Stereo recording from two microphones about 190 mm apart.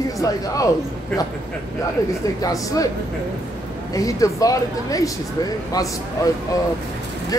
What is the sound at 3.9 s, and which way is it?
Speech, 20° left (ahead or behind).